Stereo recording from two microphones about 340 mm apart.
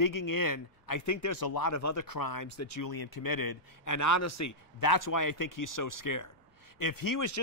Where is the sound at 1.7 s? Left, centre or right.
Left.